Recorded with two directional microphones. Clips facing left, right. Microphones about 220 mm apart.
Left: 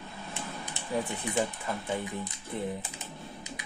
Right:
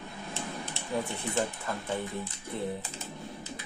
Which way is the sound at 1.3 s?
15° left (ahead or behind).